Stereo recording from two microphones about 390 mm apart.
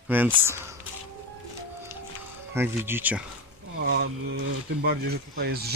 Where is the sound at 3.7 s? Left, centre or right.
Right.